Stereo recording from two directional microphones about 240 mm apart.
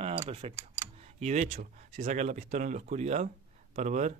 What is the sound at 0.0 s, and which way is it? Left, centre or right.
Tick-tock, right.